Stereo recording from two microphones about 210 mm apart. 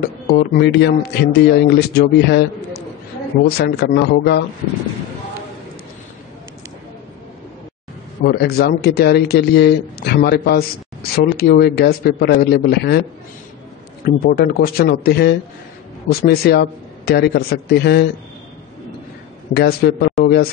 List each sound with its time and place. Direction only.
0.0 s a man's voice: 50° left (ahead or behind)
3.4 s a man's voice: 50° left (ahead or behind)
8.2 s a man's voice: 50° left (ahead or behind)
14.0 s a man's voice: 45° left (ahead or behind)
19.5 s a man's voice: 50° left (ahead or behind)